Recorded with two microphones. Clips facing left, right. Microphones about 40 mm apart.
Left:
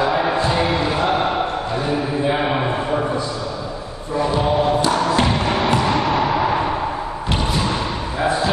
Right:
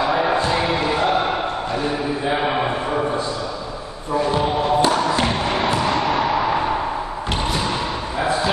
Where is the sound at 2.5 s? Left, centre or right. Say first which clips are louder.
Even; centre.